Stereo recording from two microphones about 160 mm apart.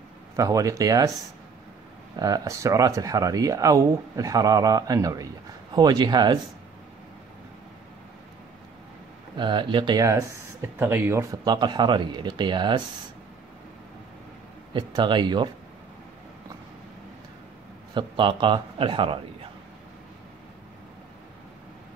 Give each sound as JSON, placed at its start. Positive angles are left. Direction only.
{"t": 0.4, "sound": "speech", "side_deg": -20}
{"t": 9.4, "sound": "speech", "side_deg": -30}
{"t": 11.4, "sound": "speech", "side_deg": -30}
{"t": 14.7, "sound": "speech", "side_deg": -30}
{"t": 17.9, "sound": "a man's voice", "side_deg": -30}